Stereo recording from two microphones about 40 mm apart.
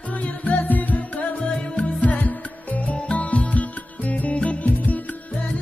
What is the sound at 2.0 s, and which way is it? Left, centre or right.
Music, left.